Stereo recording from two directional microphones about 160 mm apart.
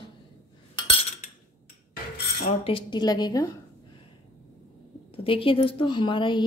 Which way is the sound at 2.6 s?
30° left (ahead or behind).